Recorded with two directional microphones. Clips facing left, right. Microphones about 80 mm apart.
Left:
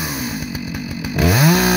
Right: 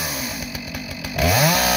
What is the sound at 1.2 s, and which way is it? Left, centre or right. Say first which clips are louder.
Chainsaw: left 3 dB; left.